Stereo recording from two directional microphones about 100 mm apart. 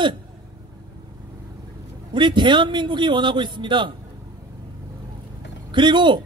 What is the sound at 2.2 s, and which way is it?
A man's voice, 50° right (ahead or behind).